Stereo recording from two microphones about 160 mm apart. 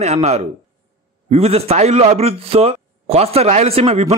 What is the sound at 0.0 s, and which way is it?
A man's voice, 45° right (ahead or behind).